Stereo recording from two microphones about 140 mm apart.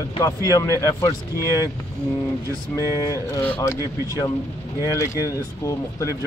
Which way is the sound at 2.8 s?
25° left (ahead or behind).